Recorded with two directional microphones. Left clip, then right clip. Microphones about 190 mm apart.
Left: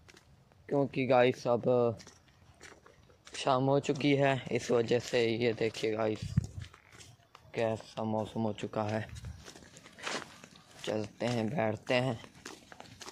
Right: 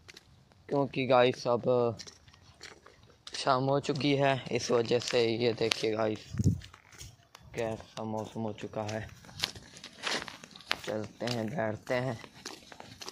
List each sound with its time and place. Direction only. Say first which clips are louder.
0.7 s speech: right 1 dB; 5° left (ahead or behind)
1.3 s speech: right 1 dB; 20° left (ahead or behind)
3.3 s speech: right 1 dB; 15° left (ahead or behind); by 6.1 s 5° right (ahead or behind)
6.4 s a sound: right 6 dB; 60° right (ahead or behind)
7.5 s speech: left 2 dB; 40° left (ahead or behind)
10.0 s a sound: right 4 dB; 40° right (ahead or behind)
11.1 s speech: left 1 dB; 35° left (ahead or behind)